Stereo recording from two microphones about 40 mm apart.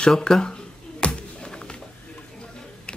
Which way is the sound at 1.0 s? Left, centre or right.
Left.